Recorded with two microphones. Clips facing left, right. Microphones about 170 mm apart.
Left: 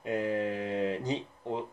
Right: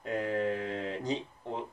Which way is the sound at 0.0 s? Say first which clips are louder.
Left 1 dB; 15° left (ahead or behind).